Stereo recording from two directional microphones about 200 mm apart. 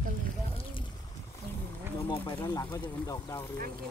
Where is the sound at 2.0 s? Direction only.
25° left (ahead or behind).